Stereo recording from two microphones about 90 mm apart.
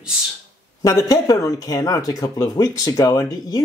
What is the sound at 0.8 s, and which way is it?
Speech, 40° left (ahead or behind).